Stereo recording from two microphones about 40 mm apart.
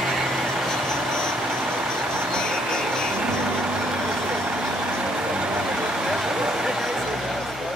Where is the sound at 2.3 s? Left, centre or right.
Centre.